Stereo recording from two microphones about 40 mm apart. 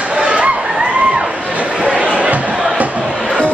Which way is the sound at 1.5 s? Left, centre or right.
Right.